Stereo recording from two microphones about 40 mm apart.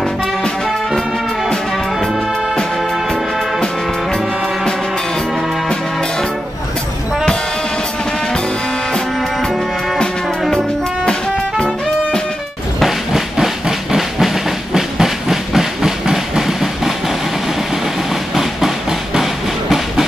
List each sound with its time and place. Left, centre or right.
11.1 s music: centre
12.8 s train: centre
18.3 s train: centre